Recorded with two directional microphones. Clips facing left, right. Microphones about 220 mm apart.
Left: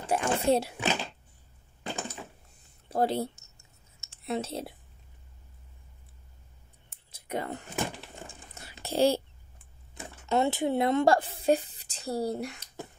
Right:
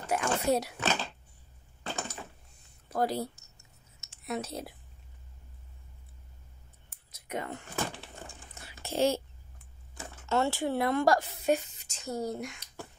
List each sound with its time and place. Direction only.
0.0 s speech: 30° left (ahead or behind)
0.7 s a child's voice: 15° left (ahead or behind)
1.8 s a sound: 15° left (ahead or behind)
2.9 s a sound: 25° left (ahead or behind)
7.1 s clicking: 30° left (ahead or behind)
8.8 s speech: 35° left (ahead or behind)
9.9 s speech: 15° left (ahead or behind); by 12.6 s 35° left (ahead or behind)